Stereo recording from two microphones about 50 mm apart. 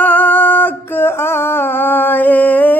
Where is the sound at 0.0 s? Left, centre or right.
Left.